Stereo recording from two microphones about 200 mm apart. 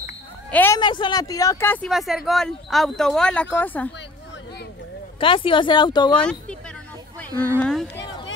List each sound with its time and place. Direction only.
0.5 s speech: 10° left (ahead or behind)
0.7 s speech: 25° left (ahead or behind)
1.9 s speech: centre (ahead or behind)
5.2 s speech: 25° left (ahead or behind)
7.3 s speech: 10° left (ahead or behind)